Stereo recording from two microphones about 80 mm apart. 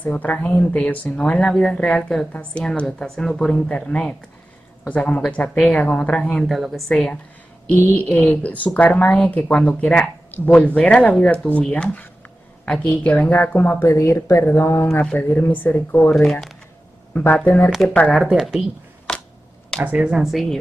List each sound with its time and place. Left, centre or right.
0.0 s a woman's voice: centre
11.3 s a woman's voice: centre
13.8 s a woman's voice: left
14.3 s a woman's voice: left
16.2 s speech: centre
17.3 s a woman's voice: centre
18.1 s speech: centre
19.1 s a sound: centre
19.8 s speech: centre
20.2 s speech: centre